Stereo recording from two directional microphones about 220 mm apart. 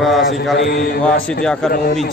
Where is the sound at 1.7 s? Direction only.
40° left (ahead or behind).